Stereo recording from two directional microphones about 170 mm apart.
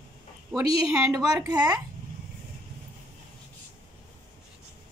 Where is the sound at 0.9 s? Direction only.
15° right (ahead or behind).